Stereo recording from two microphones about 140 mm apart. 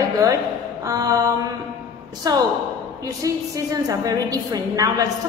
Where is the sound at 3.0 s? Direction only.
25° right (ahead or behind).